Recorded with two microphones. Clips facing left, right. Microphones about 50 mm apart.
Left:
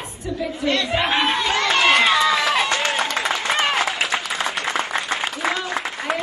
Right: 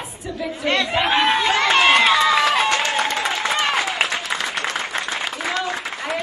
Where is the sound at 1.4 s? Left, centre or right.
Centre.